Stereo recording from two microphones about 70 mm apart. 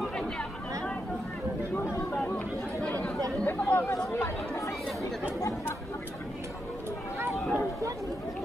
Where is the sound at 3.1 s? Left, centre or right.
Right.